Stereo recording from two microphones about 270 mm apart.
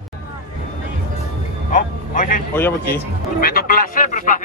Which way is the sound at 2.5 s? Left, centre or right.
Centre.